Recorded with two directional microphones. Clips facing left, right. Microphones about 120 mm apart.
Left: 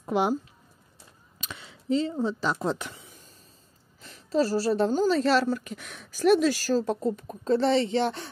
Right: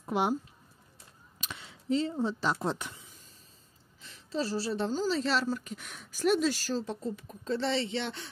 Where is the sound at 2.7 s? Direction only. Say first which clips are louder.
Left 3 dB; 90° left.